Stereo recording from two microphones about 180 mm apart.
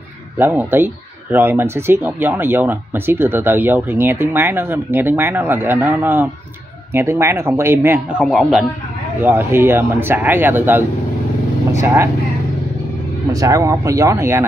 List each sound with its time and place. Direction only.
0.4 s speech: 10° right (ahead or behind)
9.2 s speech: 15° right (ahead or behind)
13.3 s speech: 20° right (ahead or behind)